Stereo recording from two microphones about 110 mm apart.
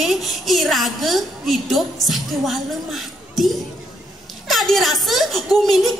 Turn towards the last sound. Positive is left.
turn(degrees=0)  # may be behind; listen again after turning